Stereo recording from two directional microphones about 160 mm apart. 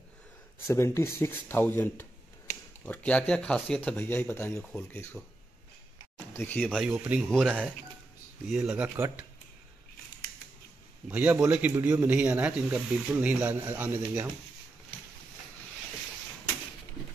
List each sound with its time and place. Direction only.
0.7 s speech: 15° left (ahead or behind)
6.8 s speech: 5° right (ahead or behind)
11.1 s speech: 10° right (ahead or behind)